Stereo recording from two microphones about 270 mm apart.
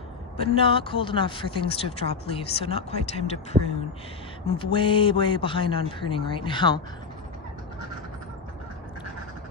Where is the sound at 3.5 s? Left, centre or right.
Right.